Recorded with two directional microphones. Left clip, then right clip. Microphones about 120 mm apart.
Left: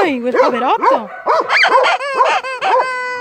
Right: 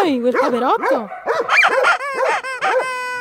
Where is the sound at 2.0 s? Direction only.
15° right (ahead or behind).